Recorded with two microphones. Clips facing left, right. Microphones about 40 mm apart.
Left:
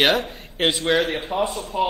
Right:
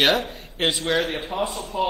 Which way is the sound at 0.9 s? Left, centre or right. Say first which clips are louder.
Left 3 dB; centre.